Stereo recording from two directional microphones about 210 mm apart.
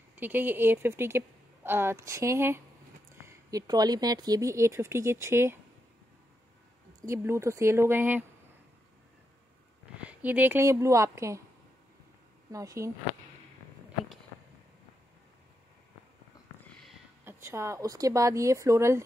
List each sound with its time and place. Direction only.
0.1 s a woman's voice: 10° right (ahead or behind)
7.0 s a woman's voice: 15° right (ahead or behind)
10.0 s a woman's voice: 5° right (ahead or behind)
12.4 s a woman's voice: 15° right (ahead or behind)
17.2 s a woman's voice: 10° right (ahead or behind)